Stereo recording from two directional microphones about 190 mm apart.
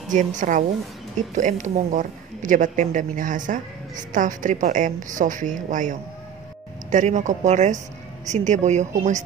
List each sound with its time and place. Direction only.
0.1 s speech: 40° right (ahead or behind)